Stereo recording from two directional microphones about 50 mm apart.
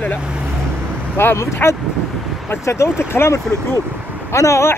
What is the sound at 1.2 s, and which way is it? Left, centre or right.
Speech, left.